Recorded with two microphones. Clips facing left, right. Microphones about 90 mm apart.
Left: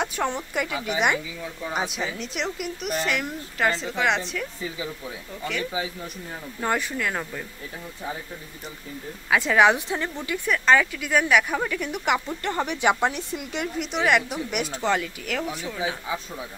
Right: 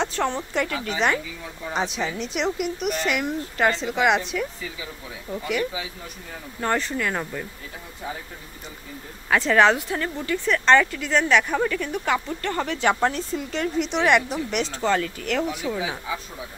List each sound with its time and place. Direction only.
0.0 s a woman's voice: 10° left (ahead or behind)
5.5 s speech: 5° right (ahead or behind)
6.6 s speech: 5° left (ahead or behind)
9.3 s a woman's voice: 5° left (ahead or behind)
9.8 s a woman's voice: 20° left (ahead or behind); by 11.8 s 5° left (ahead or behind)
11.8 s a woman's voice: 15° left (ahead or behind)
13.7 s speech: 5° left (ahead or behind)